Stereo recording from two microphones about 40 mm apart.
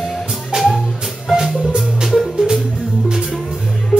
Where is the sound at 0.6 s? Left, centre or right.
Centre.